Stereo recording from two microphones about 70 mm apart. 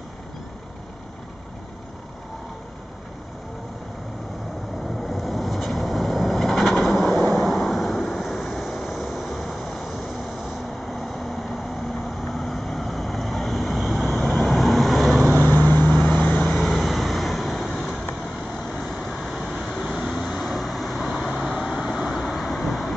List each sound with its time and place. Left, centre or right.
5.0 s vehicle: centre
15.4 s vehicle: left
16.5 s vehicle: centre
19.8 s vehicle: centre